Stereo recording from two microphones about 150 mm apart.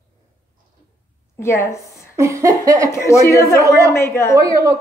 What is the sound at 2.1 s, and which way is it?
Speech, 20° right (ahead or behind).